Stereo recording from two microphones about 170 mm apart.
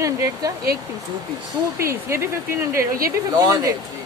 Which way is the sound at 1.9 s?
15° right (ahead or behind).